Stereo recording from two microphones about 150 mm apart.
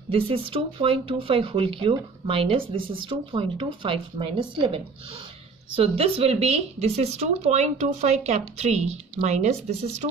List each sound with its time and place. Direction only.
0.1 s speech: 35° right (ahead or behind)